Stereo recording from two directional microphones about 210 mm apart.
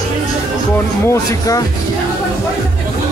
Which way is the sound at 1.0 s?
15° left (ahead or behind).